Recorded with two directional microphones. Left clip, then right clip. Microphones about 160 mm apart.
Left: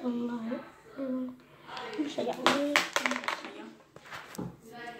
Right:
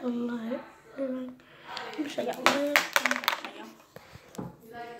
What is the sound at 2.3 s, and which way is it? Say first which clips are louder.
Speech: right 2 dB; 30° right (ahead or behind).